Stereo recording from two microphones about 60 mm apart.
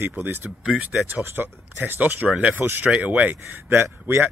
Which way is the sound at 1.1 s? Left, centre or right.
Right.